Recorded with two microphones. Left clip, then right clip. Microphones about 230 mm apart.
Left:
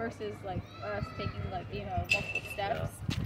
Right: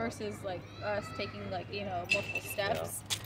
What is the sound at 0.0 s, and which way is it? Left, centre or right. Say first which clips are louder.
Speech: even; right.